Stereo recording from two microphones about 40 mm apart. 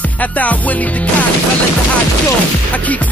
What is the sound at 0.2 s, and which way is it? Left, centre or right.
Music, left.